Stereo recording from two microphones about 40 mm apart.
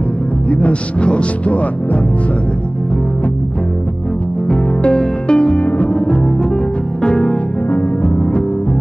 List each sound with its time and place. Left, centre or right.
0.5 s speech: left
4.5 s music: left
7.0 s music: left